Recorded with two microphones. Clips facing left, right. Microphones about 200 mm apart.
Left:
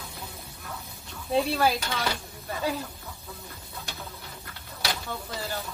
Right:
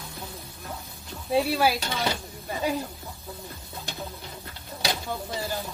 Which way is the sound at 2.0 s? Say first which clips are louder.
Right 2 dB; 15° right (ahead or behind).